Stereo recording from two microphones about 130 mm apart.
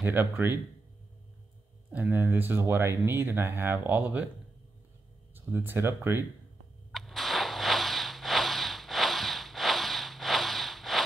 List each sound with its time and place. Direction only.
0.0 s speech: 15° right (ahead or behind)
1.9 s speech: 15° right (ahead or behind)
5.3 s speech: 15° right (ahead or behind)
6.9 s whip: centre (ahead or behind)